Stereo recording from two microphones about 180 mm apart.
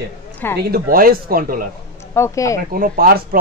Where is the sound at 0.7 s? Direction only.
55° right (ahead or behind).